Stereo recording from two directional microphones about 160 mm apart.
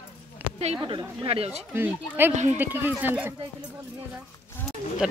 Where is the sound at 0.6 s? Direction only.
45° right (ahead or behind).